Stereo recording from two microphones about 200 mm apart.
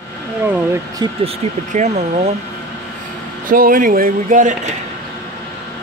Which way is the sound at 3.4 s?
45° right (ahead or behind).